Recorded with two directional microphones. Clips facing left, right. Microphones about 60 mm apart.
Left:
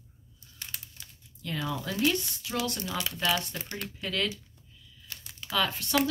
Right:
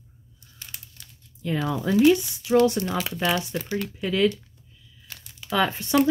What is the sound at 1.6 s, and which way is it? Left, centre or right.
Speech, right.